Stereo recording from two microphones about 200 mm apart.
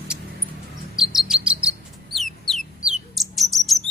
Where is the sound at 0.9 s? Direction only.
Centre (ahead or behind).